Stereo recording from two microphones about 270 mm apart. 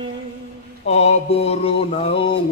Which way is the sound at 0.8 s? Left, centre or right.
Left.